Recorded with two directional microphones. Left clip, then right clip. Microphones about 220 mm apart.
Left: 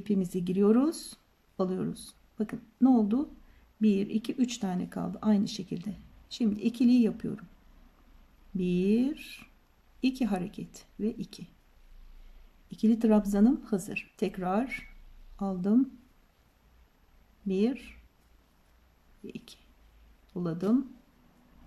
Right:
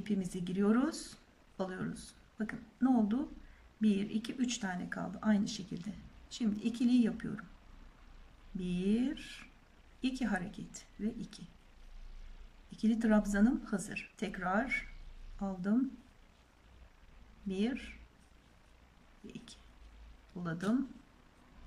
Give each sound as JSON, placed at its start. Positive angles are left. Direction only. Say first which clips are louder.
{"t": 0.0, "sound": "speech", "louder": "left 7 dB", "side_deg": 20}
{"t": 8.5, "sound": "a woman's voice", "louder": "left 8 dB", "side_deg": 20}
{"t": 12.7, "sound": "speech", "louder": "left 6 dB", "side_deg": 20}
{"t": 17.5, "sound": "speech", "louder": "left 8 dB", "side_deg": 20}
{"t": 19.2, "sound": "a woman's voice", "louder": "left 6 dB", "side_deg": 20}